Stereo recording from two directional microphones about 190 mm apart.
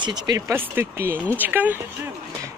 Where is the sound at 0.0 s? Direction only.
20° right (ahead or behind).